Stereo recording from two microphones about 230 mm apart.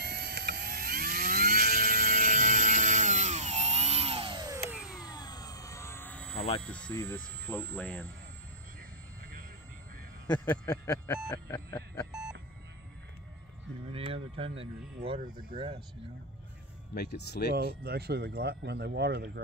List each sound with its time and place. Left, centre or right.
0.0 s vehicle: right; by 5.0 s centre
5.0 s vehicle: centre
6.3 s a sound: left
6.6 s speech: centre
10.2 s a sound: centre
13.9 s speech: right
16.9 s speech: left
17.6 s speech: right